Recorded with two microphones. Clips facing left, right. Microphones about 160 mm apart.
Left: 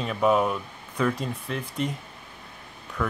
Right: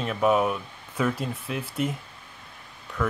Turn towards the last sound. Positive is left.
turn(degrees=0)  # may be behind; listen again after turning